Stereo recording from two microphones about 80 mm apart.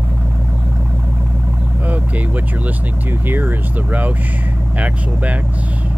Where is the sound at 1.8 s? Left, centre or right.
Centre.